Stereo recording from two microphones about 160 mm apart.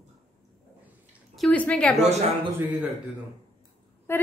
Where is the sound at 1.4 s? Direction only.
5° left (ahead or behind).